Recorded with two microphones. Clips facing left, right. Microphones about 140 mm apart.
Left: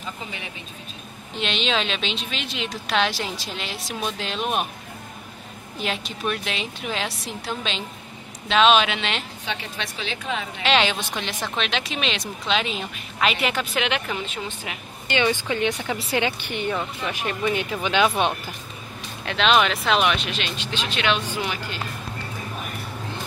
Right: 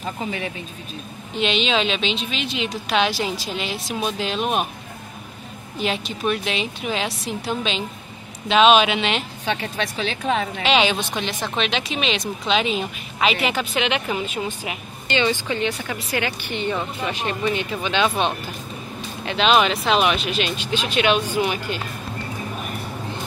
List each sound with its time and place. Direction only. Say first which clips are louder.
1.4 s a woman's voice: right 4 dB; 5° right (ahead or behind)
5.8 s a woman's voice: right 4 dB; centre (ahead or behind)
9.5 s a woman's voice: right 7 dB; 45° right (ahead or behind)
10.6 s a woman's voice: left 1 dB; 5° right (ahead or behind)
15.0 s speech: right 1 dB; 10° left (ahead or behind)
19.2 s speech: right 2 dB; 5° right (ahead or behind)